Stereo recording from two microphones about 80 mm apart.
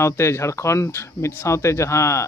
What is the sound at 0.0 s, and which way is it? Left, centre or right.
Speech, left.